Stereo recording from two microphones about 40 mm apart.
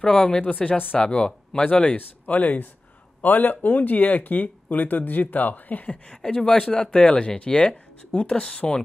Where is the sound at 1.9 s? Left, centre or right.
Left.